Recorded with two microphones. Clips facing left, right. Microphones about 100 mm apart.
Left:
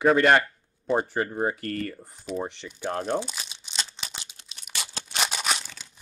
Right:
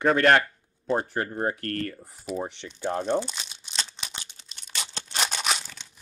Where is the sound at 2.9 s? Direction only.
5° left (ahead or behind).